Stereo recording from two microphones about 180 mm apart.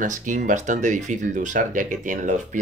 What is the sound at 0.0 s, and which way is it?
Speech, 45° right (ahead or behind).